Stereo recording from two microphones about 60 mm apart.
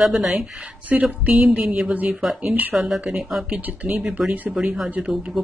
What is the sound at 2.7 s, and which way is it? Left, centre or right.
Speech, centre.